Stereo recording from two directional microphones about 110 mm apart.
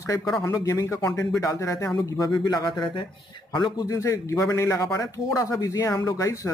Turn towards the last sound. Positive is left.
turn(degrees=30)  # may be behind; listen again after turning